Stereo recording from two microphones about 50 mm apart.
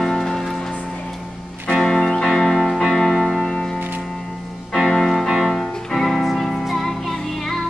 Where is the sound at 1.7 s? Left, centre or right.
Centre.